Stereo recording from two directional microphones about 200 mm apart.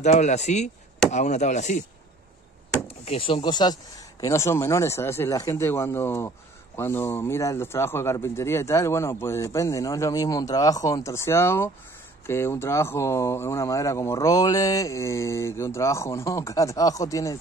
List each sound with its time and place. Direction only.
0.0 s speech: 35° left (ahead or behind)
3.1 s speech: 25° left (ahead or behind)